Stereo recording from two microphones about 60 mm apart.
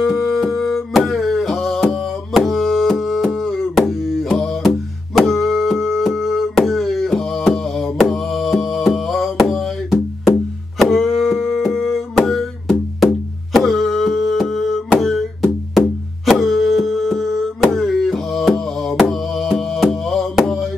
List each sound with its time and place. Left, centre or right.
0.2 s music: centre
4.3 s music: centre
5.1 s music: centre